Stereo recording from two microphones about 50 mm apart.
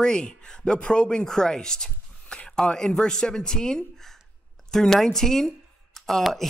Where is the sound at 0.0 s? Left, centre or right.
Centre.